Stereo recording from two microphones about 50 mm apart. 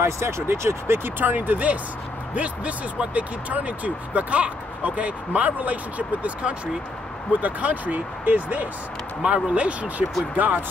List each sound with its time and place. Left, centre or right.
0.0 s speech: right
1.2 s speech: right
9.2 s speech: right
10.3 s speech: right